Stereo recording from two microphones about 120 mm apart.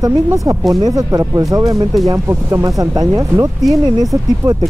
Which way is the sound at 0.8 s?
30° right (ahead or behind).